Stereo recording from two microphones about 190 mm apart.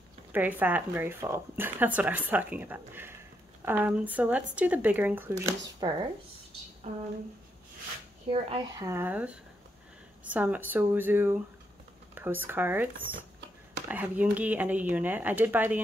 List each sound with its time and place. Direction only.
0.3 s speech: 10° right (ahead or behind)
5.8 s speech: 20° right (ahead or behind)
8.3 s speech: 30° right (ahead or behind)
8.8 s speech: 10° right (ahead or behind)